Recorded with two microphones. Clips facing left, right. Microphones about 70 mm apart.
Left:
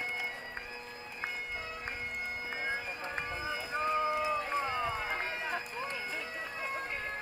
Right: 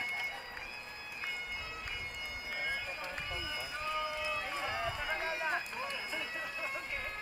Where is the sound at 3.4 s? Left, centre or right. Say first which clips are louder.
Left 6 dB; left.